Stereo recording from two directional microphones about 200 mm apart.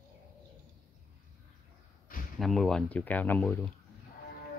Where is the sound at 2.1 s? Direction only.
45° left (ahead or behind).